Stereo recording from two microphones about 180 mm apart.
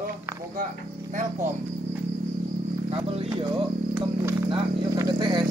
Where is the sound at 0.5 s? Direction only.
45° right (ahead or behind).